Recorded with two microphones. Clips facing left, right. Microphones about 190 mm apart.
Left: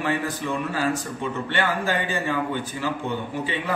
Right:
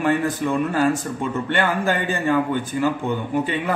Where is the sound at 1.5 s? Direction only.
50° right (ahead or behind).